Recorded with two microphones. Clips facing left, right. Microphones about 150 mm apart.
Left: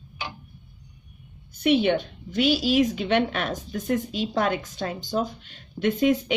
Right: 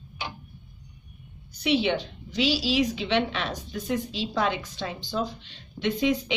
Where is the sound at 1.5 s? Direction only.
50° left (ahead or behind).